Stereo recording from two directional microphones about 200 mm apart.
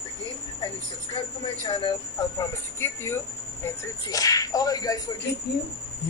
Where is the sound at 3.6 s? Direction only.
15° left (ahead or behind).